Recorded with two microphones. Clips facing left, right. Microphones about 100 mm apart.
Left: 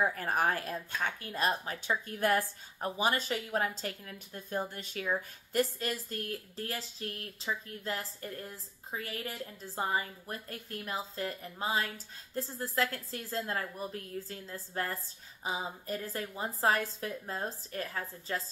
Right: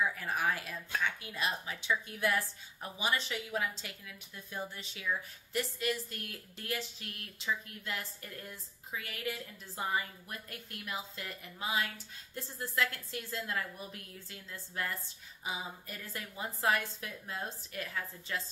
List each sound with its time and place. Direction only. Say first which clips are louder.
0.0 s speech: left 3 dB; 50° left (ahead or behind)